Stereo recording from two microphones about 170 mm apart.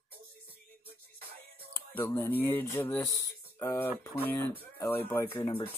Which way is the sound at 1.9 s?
15° left (ahead or behind).